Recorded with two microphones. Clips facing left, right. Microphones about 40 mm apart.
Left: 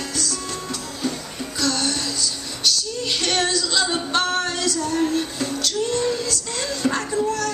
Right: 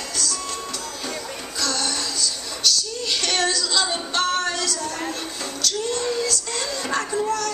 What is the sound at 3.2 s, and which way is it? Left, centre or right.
Female singing, left.